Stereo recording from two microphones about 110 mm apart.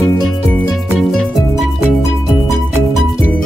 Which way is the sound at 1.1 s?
5° left (ahead or behind).